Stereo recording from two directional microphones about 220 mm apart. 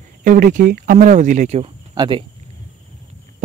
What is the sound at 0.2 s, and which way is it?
Speech, 35° right (ahead or behind).